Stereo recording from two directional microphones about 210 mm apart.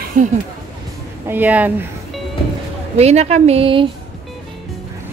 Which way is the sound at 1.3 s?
10° right (ahead or behind).